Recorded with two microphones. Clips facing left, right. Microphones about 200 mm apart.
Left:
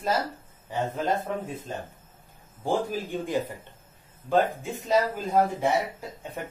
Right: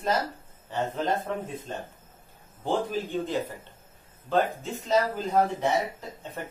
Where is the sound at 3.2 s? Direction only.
15° left (ahead or behind).